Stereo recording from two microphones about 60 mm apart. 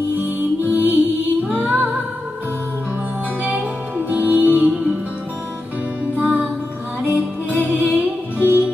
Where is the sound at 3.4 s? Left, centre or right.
Right.